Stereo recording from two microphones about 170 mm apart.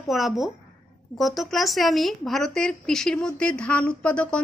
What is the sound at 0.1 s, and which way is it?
A woman's voice, centre (ahead or behind).